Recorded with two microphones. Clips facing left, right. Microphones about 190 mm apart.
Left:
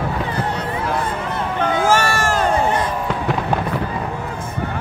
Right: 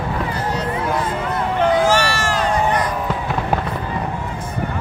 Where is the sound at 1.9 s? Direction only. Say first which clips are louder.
Left 1 dB; 50° left (ahead or behind).